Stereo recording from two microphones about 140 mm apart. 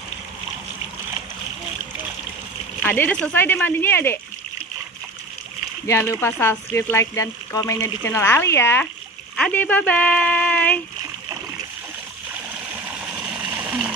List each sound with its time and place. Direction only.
2.8 s speech: 15° left (ahead or behind)
5.9 s speech: 15° left (ahead or behind)
12.7 s water: 15° right (ahead or behind)